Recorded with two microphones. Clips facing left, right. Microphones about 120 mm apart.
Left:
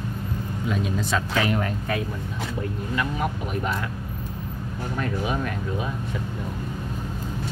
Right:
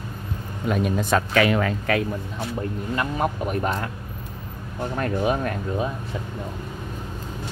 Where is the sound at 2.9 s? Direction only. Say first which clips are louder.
Right 2 dB; 45° right (ahead or behind).